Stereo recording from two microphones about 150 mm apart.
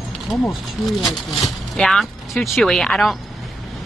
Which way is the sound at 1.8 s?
Centre (ahead or behind).